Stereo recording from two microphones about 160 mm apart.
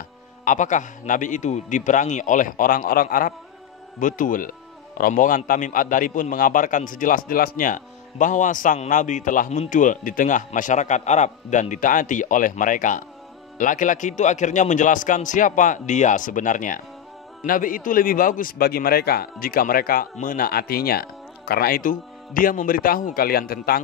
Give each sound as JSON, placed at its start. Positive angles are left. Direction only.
{"t": 0.5, "sound": "a man's voice", "side_deg": 50}